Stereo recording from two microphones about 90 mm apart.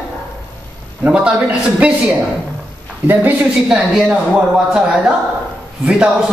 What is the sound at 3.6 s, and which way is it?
A woman's voice, 5° right (ahead or behind).